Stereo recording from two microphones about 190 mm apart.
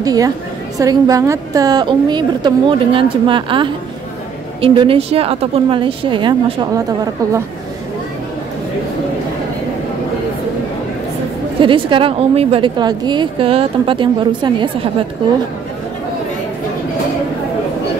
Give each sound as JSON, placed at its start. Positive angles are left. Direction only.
{"t": 0.0, "sound": "a woman's voice", "side_deg": -20}
{"t": 11.6, "sound": "a woman's voice", "side_deg": -25}